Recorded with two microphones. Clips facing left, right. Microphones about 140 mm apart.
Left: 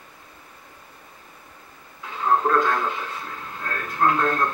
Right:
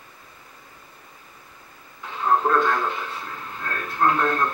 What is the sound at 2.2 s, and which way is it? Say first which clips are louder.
Radio: even; centre (ahead or behind).